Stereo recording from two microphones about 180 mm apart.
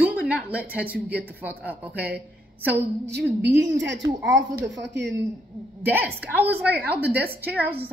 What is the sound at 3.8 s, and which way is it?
Speech, 80° right.